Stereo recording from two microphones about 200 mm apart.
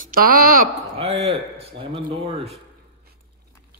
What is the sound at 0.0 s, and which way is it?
Speech, 45° right (ahead or behind).